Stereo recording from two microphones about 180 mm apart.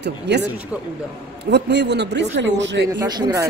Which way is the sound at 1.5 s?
70° right (ahead or behind).